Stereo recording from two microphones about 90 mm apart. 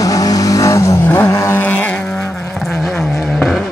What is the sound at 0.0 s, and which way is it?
Vehicle, 40° left (ahead or behind).